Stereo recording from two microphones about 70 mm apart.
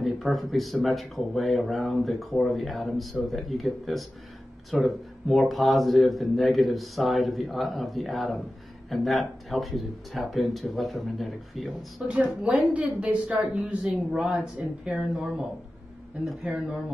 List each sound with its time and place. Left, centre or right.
0.0 s speech: centre
12.1 s speech: centre